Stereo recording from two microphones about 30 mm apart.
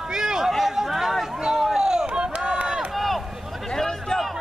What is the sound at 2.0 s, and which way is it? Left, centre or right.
Run, right.